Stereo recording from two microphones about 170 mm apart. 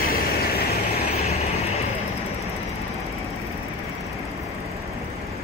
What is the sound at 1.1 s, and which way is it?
Vehicle, 40° left (ahead or behind).